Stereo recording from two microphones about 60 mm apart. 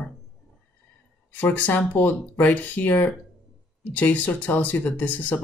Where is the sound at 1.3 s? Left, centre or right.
Left.